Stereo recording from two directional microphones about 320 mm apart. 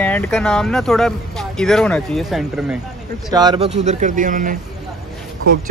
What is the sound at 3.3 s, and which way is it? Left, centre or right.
Speech, centre.